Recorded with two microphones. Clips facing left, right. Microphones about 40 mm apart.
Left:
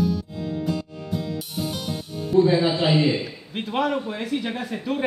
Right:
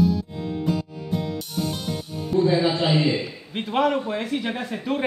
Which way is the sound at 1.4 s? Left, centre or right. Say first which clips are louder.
Right 1 dB; centre.